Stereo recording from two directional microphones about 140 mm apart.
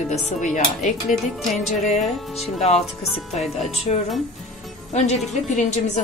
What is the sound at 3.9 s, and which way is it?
A woman's voice, 55° left (ahead or behind).